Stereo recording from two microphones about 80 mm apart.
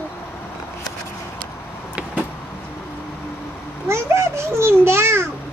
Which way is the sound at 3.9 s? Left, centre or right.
Right.